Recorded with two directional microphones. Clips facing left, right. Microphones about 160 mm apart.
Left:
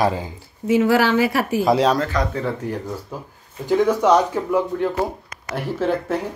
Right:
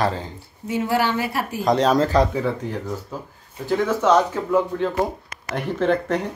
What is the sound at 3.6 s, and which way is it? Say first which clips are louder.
Speech: left 3 dB; 15° left (ahead or behind).